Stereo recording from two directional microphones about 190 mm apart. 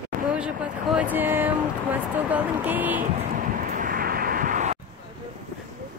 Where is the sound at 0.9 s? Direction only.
10° right (ahead or behind).